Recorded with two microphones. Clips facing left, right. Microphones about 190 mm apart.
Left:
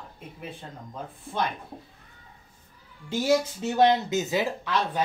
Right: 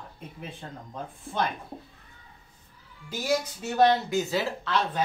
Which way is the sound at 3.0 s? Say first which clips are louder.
Left 4 dB; 25° left (ahead or behind).